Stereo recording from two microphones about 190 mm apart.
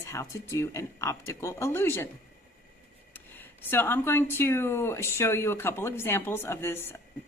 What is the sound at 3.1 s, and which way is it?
A woman's voice, 10° left (ahead or behind).